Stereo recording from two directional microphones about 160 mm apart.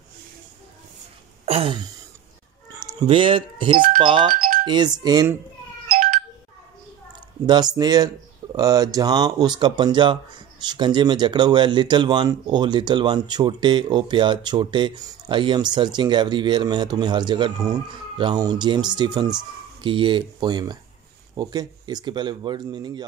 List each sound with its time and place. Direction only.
1.4 s a sound: 35° right (ahead or behind)
2.7 s speech: 25° right (ahead or behind)
7.4 s speech: 25° right (ahead or behind)